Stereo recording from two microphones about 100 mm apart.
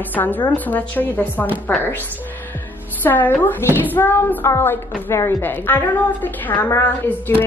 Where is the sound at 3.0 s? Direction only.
20° left (ahead or behind).